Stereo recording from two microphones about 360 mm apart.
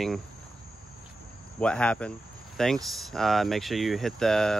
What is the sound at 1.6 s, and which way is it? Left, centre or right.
Speech, centre.